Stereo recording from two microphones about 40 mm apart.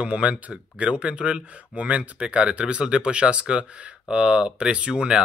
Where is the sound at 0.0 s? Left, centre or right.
Right.